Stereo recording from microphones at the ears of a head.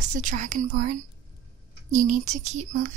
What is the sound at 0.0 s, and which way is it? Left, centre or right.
Speech, right.